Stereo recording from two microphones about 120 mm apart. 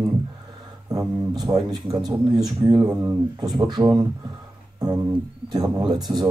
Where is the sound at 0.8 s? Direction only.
30° right (ahead or behind).